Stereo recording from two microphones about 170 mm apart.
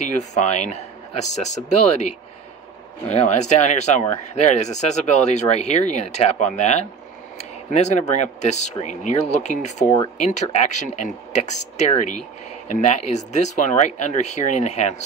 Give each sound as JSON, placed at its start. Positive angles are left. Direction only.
{"t": 0.0, "sound": "speech", "side_deg": 45}